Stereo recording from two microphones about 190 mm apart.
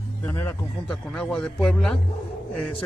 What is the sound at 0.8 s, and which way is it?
A man's voice, 5° left (ahead or behind).